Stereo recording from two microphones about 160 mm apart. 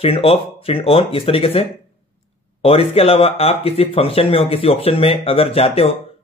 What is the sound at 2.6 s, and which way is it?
Speech, 35° left (ahead or behind).